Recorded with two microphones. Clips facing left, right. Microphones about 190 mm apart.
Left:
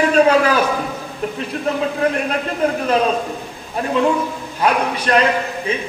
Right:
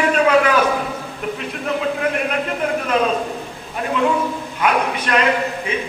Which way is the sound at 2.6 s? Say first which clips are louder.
Left 4 dB; 35° left (ahead or behind).